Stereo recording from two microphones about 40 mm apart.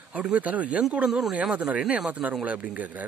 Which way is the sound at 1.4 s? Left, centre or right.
Right.